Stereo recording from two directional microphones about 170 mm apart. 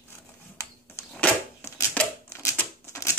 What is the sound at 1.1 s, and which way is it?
Typewriter, 10° left (ahead or behind).